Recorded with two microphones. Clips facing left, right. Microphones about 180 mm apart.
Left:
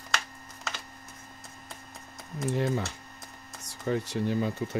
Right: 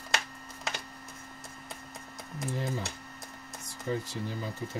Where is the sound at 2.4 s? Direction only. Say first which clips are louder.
Left 6 dB; 65° left (ahead or behind).